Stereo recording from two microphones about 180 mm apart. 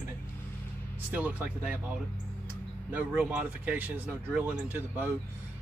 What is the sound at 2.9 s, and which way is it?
Speech, 10° right (ahead or behind).